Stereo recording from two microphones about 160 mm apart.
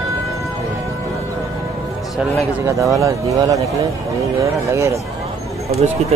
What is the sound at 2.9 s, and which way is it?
Speech, 20° right (ahead or behind).